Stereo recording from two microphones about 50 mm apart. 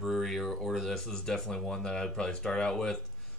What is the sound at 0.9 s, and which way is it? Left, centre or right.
Speech, centre.